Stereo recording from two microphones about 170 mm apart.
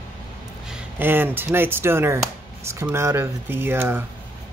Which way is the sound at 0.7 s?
10° right (ahead or behind).